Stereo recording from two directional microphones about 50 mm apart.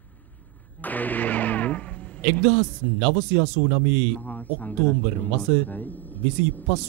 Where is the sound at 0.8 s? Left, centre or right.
Left.